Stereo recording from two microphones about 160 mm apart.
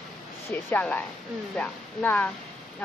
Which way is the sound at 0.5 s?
10° left (ahead or behind).